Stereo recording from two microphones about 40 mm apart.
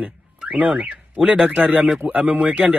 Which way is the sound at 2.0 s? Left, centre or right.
Right.